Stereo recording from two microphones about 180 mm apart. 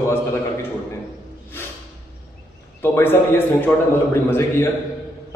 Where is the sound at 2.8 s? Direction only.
10° left (ahead or behind).